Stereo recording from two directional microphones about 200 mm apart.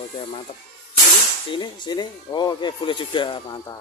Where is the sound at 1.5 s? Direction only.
25° left (ahead or behind).